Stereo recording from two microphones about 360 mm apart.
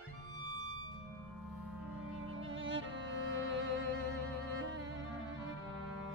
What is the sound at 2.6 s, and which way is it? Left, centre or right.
Music, right.